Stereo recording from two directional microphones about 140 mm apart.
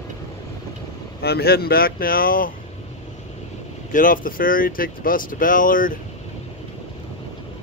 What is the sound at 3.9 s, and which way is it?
Speech, 75° left (ahead or behind).